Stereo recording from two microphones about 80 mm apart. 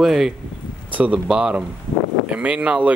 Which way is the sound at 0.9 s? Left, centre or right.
Centre.